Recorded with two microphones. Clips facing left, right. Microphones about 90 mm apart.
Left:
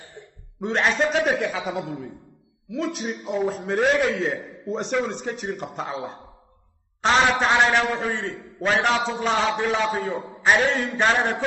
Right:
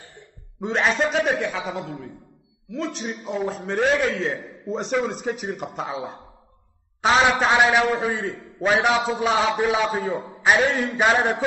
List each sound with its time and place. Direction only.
0.6 s a man's voice: centre (ahead or behind)
8.5 s a man's voice: 20° right (ahead or behind)
8.8 s a man's voice: 5° right (ahead or behind)